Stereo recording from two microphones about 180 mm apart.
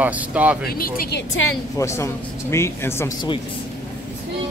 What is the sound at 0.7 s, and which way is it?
Speech, 55° left (ahead or behind).